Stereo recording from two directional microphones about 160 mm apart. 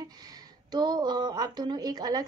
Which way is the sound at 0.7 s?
25° right (ahead or behind).